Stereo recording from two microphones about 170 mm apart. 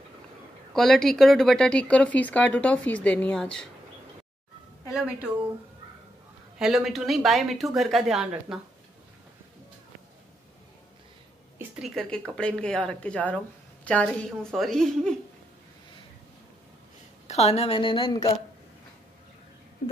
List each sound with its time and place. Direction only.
0.7 s speech: centre (ahead or behind)
4.9 s a woman's voice: 5° right (ahead or behind)
6.6 s speech: centre (ahead or behind)
11.5 s speech: 5° right (ahead or behind)
17.3 s a woman's voice: 40° left (ahead or behind)